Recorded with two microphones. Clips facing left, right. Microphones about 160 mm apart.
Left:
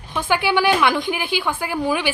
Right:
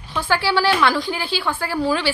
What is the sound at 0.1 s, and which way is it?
Speech, 15° left (ahead or behind).